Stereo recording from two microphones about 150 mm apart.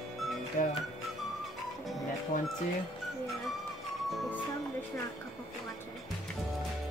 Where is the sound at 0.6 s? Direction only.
60° left (ahead or behind).